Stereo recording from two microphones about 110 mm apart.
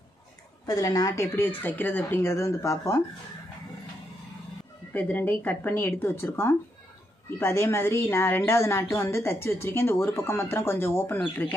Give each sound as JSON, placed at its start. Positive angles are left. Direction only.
{"t": 0.7, "sound": "speech", "side_deg": 35}
{"t": 4.9, "sound": "speech", "side_deg": 15}